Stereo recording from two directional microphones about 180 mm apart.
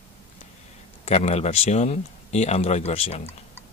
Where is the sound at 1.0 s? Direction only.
35° left (ahead or behind).